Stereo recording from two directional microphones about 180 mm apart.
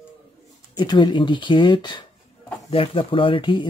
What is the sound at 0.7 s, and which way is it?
Speech, 25° left (ahead or behind).